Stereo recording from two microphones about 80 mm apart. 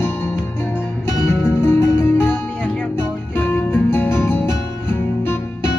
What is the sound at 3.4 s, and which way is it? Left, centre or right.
Music, left.